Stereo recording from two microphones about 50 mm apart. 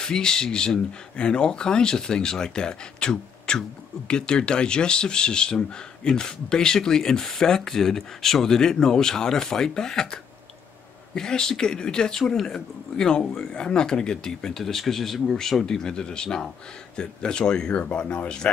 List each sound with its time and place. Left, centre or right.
0.0 s speech: centre